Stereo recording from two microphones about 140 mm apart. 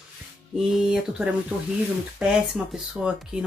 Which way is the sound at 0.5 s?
Centre (ahead or behind).